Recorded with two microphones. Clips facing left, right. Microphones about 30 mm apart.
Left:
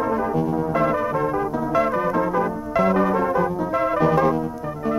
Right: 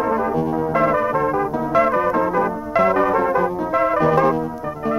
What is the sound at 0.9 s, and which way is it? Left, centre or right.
Organ, right.